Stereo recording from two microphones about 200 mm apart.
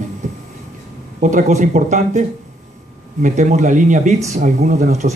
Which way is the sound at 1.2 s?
40° right (ahead or behind).